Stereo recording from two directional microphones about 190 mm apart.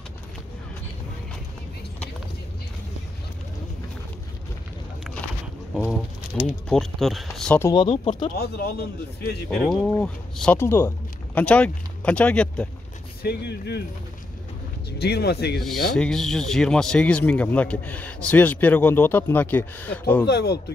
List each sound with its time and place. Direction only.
5.8 s speech: 5° right (ahead or behind)
7.8 s speech: 35° left (ahead or behind)
8.4 s a man's voice: 55° left (ahead or behind)
9.6 s speech: 5° left (ahead or behind)
13.2 s speech: 60° left (ahead or behind)
14.9 s speech: 60° left (ahead or behind)
16.0 s speech: 5° left (ahead or behind)
20.2 s speech: 60° left (ahead or behind)